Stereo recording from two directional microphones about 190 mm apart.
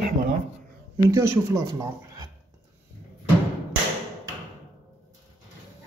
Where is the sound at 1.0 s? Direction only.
15° right (ahead or behind).